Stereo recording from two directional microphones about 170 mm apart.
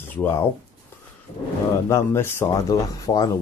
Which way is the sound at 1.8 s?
15° left (ahead or behind).